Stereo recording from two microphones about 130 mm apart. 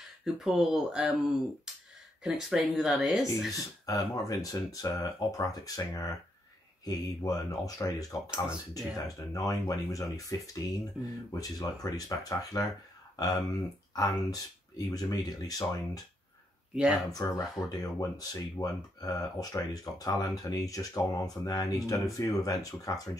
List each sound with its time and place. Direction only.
0.2 s speech: 5° right (ahead or behind)
2.2 s speech: 5° right (ahead or behind)
3.8 s speech: 30° left (ahead or behind)
8.3 s speech: 5° right (ahead or behind)
9.0 s speech: 25° left (ahead or behind)
16.7 s speech: 10° right (ahead or behind)
17.2 s speech: 25° left (ahead or behind)